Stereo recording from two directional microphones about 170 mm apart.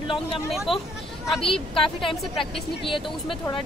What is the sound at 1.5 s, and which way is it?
Speech, 30° left (ahead or behind).